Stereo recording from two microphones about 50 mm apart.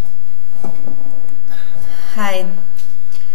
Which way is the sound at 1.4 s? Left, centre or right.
Right.